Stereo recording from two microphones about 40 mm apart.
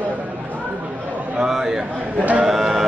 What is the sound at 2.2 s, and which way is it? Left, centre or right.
Speech, right.